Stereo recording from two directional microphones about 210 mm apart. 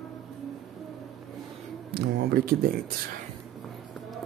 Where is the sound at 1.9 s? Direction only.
50° right (ahead or behind).